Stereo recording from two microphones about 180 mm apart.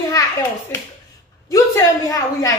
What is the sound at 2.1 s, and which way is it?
Speech, 20° left (ahead or behind).